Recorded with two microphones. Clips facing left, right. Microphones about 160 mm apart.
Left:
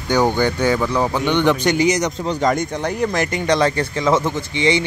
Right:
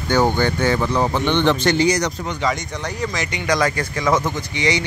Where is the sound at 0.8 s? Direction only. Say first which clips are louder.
Even; 5° right (ahead or behind).